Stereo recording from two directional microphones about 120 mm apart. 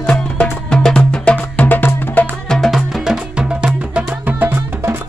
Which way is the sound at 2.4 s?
5° left (ahead or behind).